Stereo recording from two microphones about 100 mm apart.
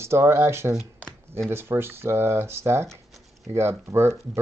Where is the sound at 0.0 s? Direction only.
25° right (ahead or behind).